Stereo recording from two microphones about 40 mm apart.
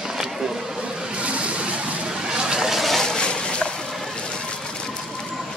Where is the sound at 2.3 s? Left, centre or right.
Centre.